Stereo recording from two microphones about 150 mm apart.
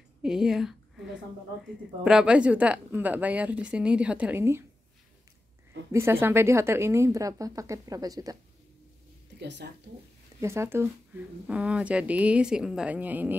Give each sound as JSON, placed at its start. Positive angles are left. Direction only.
{"t": 0.2, "sound": "a sound", "side_deg": -5}
{"t": 2.0, "sound": "a woman's voice", "side_deg": -5}
{"t": 5.9, "sound": "a woman's voice", "side_deg": -15}
{"t": 9.6, "sound": "speech", "side_deg": -90}
{"t": 10.4, "sound": "a woman's voice", "side_deg": -20}